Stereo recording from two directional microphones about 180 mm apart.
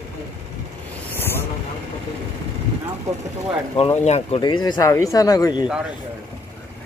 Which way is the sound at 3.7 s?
35° left (ahead or behind).